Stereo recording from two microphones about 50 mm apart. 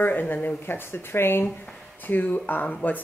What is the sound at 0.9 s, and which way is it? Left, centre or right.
Speech, left.